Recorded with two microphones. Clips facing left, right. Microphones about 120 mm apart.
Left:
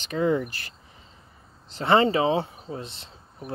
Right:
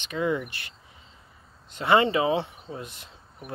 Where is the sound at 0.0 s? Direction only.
40° left (ahead or behind).